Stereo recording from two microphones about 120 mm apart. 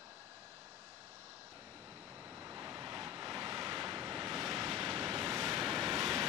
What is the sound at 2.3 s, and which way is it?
Vehicle, 20° right (ahead or behind).